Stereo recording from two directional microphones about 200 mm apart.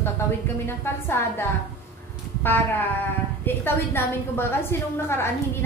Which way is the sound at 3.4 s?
10° left (ahead or behind).